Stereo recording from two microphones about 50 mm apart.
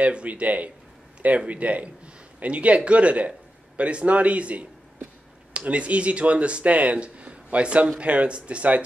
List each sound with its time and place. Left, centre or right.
0.0 s speech: right